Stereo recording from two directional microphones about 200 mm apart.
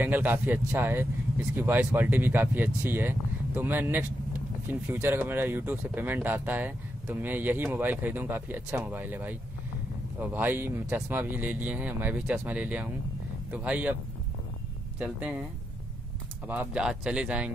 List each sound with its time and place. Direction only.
0.0 s speech: 10° right (ahead or behind)
15.0 s speech: 5° right (ahead or behind)
16.4 s speech: 5° right (ahead or behind)